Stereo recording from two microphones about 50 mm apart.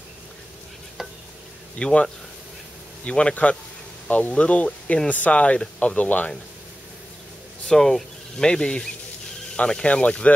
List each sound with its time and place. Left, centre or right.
1.8 s speech: left
3.1 s speech: left
7.7 s speech: centre